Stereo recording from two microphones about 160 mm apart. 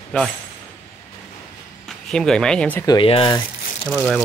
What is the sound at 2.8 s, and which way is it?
Speech, 30° left (ahead or behind).